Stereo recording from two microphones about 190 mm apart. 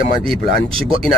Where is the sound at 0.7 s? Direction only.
30° right (ahead or behind).